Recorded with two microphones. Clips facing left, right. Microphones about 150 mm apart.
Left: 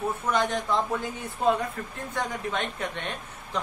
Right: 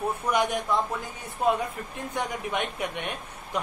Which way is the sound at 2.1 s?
15° right (ahead or behind).